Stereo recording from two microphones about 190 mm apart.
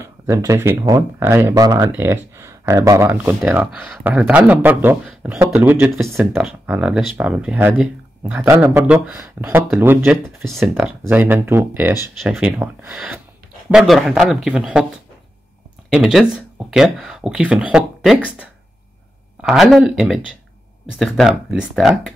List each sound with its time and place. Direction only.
0.0 s speech: 15° right (ahead or behind); by 10.7 s centre (ahead or behind)
10.7 s speech: 10° right (ahead or behind)
15.9 s speech: centre (ahead or behind)